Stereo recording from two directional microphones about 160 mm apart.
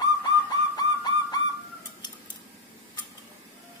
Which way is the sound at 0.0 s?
25° left (ahead or behind).